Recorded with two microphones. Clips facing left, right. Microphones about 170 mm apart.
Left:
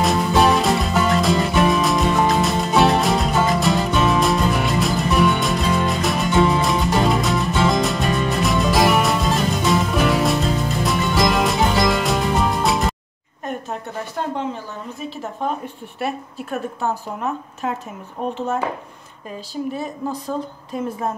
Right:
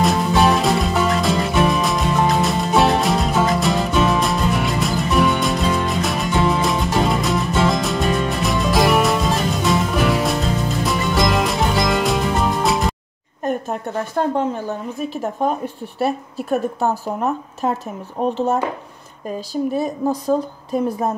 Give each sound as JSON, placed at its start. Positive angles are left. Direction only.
{"t": 0.0, "sound": "music", "side_deg": 0}
{"t": 14.2, "sound": "speech", "side_deg": -45}
{"t": 15.4, "sound": "speech", "side_deg": -40}